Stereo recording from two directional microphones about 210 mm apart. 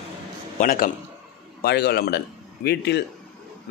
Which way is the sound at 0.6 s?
40° left (ahead or behind).